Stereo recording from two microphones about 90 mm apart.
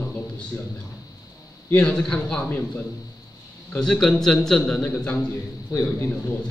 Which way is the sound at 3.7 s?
5° left (ahead or behind).